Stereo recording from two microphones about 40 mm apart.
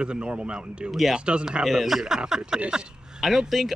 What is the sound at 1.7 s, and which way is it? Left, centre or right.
Speech, centre.